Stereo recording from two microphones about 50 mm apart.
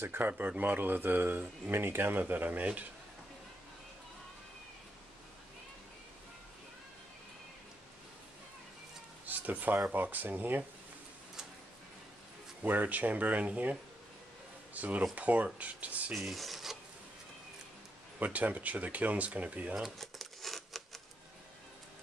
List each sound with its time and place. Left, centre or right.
0.0 s speech: right
0.3 s speech: right
9.2 s a sound: right
9.9 s speech: right
12.6 s speech: right
16.1 s speech: centre
18.2 s speech: right
20.0 s a sound: centre